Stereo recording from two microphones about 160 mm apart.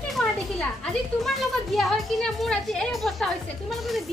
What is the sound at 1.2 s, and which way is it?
A woman's voice, centre (ahead or behind).